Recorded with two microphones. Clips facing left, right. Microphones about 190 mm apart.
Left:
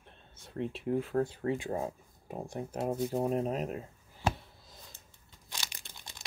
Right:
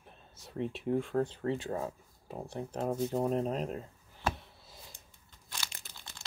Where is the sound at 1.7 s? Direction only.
20° left (ahead or behind).